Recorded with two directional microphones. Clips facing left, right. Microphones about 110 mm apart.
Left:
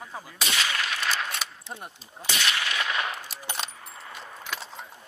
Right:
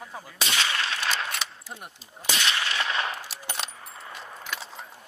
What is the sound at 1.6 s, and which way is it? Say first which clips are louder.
Speech: left 2 dB; 25° left (ahead or behind).